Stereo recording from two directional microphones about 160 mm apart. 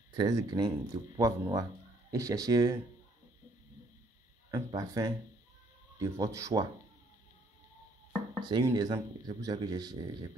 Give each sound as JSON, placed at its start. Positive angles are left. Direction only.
{"t": 0.2, "sound": "speech", "side_deg": -25}
{"t": 4.5, "sound": "speech", "side_deg": -20}
{"t": 8.4, "sound": "speech", "side_deg": -25}